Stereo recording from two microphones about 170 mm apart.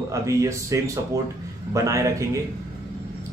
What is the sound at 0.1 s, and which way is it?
Speech, 20° right (ahead or behind).